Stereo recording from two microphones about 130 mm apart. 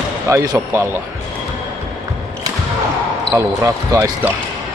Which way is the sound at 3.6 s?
20° right (ahead or behind).